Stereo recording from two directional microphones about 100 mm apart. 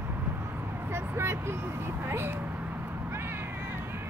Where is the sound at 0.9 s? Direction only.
25° right (ahead or behind).